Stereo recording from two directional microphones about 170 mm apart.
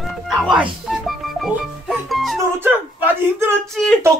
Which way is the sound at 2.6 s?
10° right (ahead or behind).